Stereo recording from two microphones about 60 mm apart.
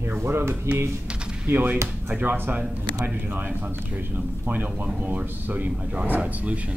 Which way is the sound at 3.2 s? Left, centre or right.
Right.